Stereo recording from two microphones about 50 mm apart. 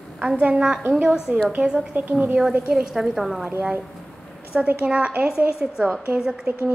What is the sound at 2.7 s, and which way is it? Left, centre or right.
Speech, centre.